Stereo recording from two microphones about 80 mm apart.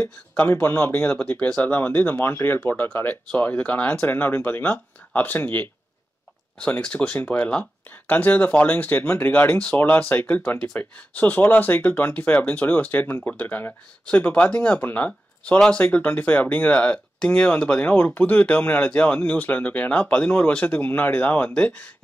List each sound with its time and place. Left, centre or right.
0.6 s speech: left